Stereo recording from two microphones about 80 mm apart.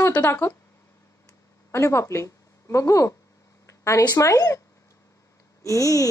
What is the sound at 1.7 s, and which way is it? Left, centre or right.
Speech, left.